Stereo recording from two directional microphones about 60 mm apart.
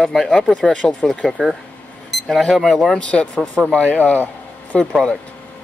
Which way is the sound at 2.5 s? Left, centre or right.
Centre.